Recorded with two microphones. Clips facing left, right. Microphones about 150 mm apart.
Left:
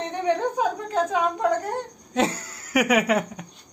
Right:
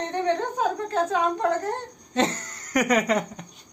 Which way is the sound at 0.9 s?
10° left (ahead or behind).